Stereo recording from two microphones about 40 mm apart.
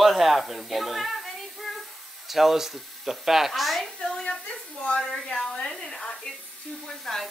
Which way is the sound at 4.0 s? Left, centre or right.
Centre.